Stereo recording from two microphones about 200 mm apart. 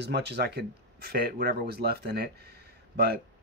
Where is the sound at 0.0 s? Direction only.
55° right (ahead or behind).